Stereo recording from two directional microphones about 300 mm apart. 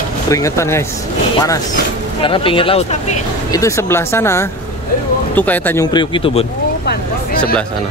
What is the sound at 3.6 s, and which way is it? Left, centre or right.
A man's voice, centre.